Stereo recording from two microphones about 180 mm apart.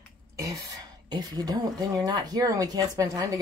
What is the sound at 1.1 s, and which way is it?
Speech, 20° right (ahead or behind).